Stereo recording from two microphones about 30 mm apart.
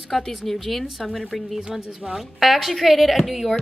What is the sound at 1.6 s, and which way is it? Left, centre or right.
Speech, right.